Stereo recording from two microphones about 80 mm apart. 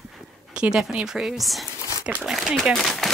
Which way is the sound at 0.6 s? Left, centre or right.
Centre.